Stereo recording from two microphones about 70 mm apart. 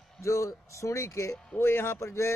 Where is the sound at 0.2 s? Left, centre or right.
Left.